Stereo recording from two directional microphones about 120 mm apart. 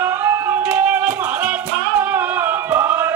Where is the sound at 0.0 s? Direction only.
25° right (ahead or behind).